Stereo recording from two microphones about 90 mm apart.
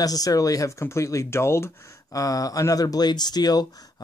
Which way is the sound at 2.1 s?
40° left (ahead or behind).